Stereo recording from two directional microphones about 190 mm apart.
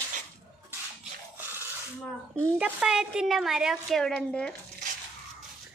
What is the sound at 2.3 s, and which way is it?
A woman's voice, 5° right (ahead or behind).